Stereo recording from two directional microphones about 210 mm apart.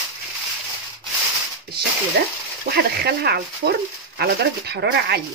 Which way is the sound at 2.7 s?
50° right (ahead or behind).